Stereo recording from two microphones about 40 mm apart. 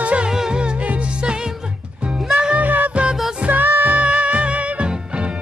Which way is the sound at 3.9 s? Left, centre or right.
Right.